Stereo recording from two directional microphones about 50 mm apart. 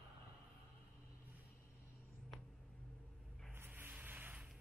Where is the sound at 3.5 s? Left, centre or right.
Right.